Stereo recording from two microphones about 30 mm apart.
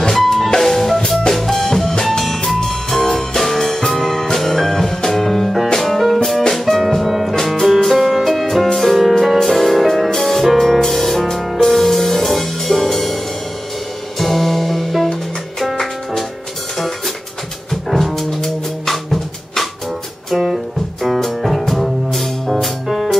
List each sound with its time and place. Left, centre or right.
0.1 s music: centre
0.6 s drum kit: centre
0.9 s music: centre
1.3 s drum kit: centre
1.7 s music: centre
14.2 s music: centre
17.9 s music: centre
20.3 s music: centre
21.0 s music: centre